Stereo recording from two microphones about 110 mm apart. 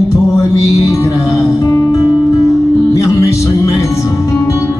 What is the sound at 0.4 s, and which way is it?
Music, 30° left (ahead or behind).